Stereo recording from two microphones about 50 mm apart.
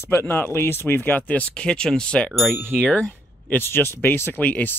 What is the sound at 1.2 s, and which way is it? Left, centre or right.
Speech, left.